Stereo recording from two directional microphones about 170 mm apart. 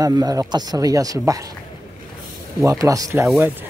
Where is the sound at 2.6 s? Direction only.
20° right (ahead or behind).